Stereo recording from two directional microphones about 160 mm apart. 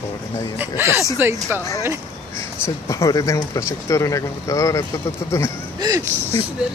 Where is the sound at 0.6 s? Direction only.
15° right (ahead or behind).